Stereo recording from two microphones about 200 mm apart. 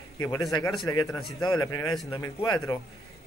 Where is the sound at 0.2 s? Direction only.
20° left (ahead or behind).